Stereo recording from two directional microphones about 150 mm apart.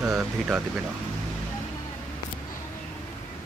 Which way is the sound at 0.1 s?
5° right (ahead or behind).